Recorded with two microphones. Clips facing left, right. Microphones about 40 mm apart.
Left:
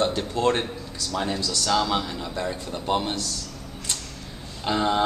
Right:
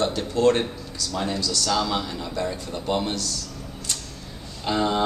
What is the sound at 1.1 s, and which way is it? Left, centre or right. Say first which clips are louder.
Speech: even; centre.